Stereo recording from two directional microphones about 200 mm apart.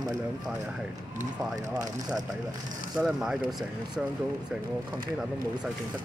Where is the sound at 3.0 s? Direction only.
5° right (ahead or behind).